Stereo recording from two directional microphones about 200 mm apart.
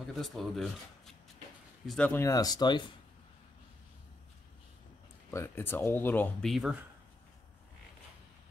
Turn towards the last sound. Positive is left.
turn(degrees=0)  # may be behind; listen again after turning